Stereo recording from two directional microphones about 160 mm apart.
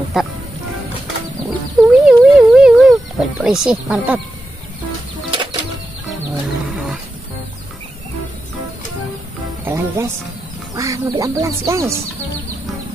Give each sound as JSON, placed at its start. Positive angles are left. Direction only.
{"t": 0.2, "sound": "speech", "side_deg": 0}
{"t": 1.9, "sound": "a sound", "side_deg": -5}
{"t": 3.4, "sound": "speech", "side_deg": -5}
{"t": 5.3, "sound": "bird flight", "side_deg": -30}
{"t": 9.7, "sound": "music", "side_deg": -15}
{"t": 10.7, "sound": "speech", "side_deg": -20}